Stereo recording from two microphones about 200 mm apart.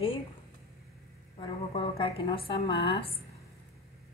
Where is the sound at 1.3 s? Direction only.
25° left (ahead or behind).